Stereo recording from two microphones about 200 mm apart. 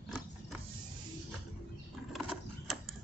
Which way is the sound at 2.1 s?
Centre (ahead or behind).